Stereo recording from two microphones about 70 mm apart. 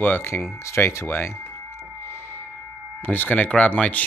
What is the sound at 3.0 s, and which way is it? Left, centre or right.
Speech, left.